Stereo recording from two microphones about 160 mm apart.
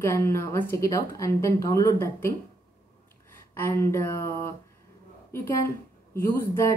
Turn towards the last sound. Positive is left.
turn(degrees=15)  # may be behind; listen again after turning